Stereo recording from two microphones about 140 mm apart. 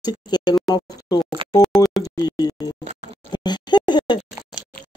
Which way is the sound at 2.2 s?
30° left (ahead or behind).